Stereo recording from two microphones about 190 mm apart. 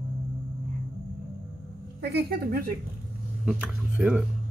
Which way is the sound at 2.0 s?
55° right (ahead or behind).